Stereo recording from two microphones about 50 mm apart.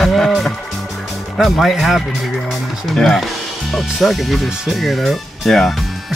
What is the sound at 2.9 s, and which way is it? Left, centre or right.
Speech, centre.